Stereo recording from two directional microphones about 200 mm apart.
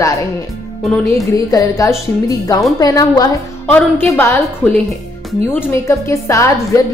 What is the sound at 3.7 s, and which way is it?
A woman's voice, 10° left (ahead or behind).